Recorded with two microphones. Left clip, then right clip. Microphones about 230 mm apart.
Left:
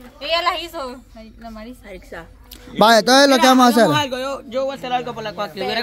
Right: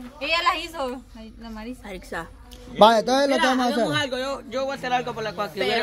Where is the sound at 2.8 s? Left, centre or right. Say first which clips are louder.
Left 5 dB; left.